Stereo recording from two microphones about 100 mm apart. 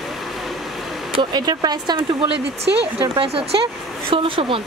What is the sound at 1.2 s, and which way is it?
Speech, 45° right (ahead or behind).